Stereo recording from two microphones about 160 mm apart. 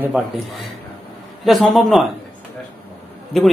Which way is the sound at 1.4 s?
Centre (ahead or behind).